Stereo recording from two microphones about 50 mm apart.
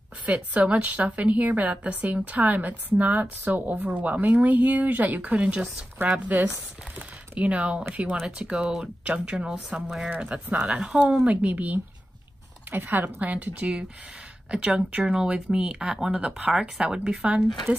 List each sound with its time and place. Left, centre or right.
0.2 s a woman's voice: right
5.3 s speech: right
6.3 s a woman's voice: right
7.0 s speech: right
8.8 s speech: right
11.2 s a woman's voice: right
12.7 s a woman's voice: right